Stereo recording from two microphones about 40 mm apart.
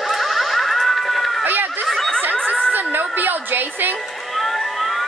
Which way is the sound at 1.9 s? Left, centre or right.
Centre.